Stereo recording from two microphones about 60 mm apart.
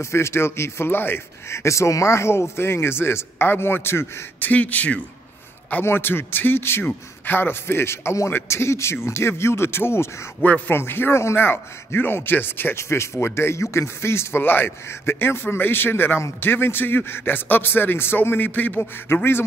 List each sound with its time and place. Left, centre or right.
0.0 s speech: left
4.5 s speech: left
5.9 s speech: left
12.7 s speech: left